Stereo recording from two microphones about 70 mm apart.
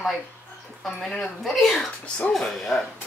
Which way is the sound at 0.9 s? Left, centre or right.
Centre.